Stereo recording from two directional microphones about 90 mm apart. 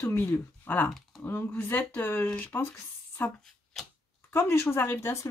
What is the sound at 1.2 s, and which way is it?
Speech, 20° left (ahead or behind).